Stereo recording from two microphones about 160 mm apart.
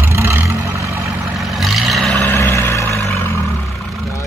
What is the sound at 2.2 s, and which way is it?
Vehicle, 15° left (ahead or behind).